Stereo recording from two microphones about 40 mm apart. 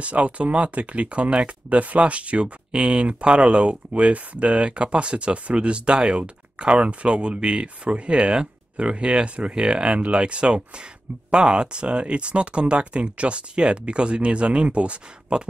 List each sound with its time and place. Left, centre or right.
0.0 s speech: right